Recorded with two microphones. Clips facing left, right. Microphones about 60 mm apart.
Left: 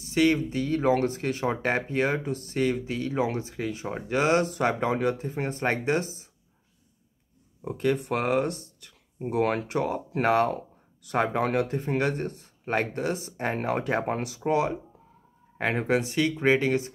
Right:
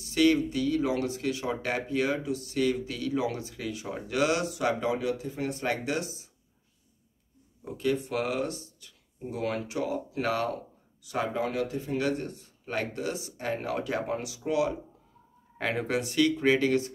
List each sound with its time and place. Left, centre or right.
0.0 s speech: left
7.6 s speech: left
10.1 s speech: left
11.1 s speech: left
15.5 s speech: left